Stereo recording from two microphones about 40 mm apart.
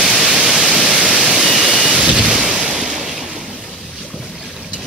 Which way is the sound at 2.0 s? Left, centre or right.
Right.